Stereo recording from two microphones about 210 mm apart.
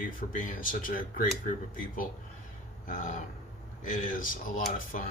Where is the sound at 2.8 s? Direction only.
40° left (ahead or behind).